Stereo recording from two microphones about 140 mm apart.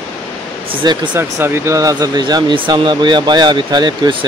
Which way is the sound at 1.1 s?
15° right (ahead or behind).